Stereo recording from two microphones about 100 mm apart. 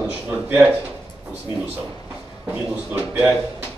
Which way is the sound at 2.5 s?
20° right (ahead or behind).